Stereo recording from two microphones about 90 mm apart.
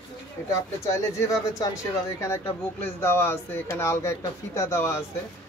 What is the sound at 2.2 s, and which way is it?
Speech, 30° left (ahead or behind).